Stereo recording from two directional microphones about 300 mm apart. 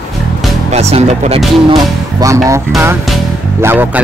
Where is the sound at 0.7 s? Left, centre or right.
Right.